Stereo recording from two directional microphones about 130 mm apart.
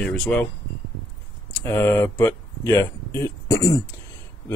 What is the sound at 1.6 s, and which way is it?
Speech, 20° left (ahead or behind).